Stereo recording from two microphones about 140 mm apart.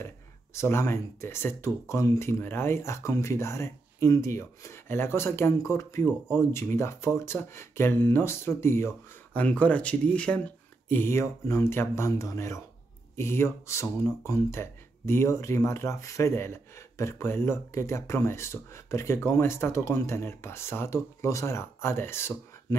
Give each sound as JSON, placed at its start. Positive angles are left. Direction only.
{"t": 0.6, "sound": "speech", "side_deg": 15}